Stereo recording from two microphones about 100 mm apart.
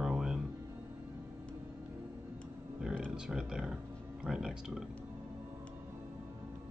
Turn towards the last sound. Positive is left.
turn(degrees=-5)  # may be behind; listen again after turning